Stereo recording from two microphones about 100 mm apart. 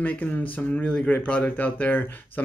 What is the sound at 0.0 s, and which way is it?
Speech, 15° left (ahead or behind).